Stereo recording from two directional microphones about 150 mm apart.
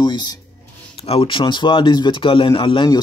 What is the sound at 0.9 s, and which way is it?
Speech, 40° left (ahead or behind).